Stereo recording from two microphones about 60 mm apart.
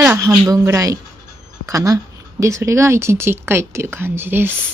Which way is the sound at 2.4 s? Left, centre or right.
Right.